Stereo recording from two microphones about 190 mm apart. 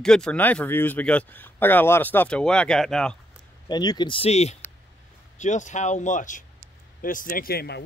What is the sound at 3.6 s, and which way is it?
Speech, 20° left (ahead or behind).